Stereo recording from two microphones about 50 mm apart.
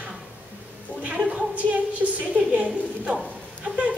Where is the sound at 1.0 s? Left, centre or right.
Right.